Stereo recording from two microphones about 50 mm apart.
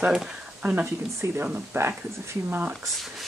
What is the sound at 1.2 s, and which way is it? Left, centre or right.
Speech, right.